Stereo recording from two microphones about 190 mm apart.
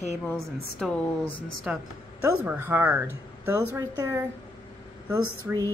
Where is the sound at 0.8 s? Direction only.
Centre (ahead or behind); by 4.2 s 15° right (ahead or behind).